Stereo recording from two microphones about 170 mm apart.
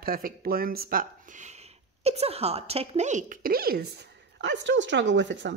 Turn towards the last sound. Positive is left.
turn(degrees=-90)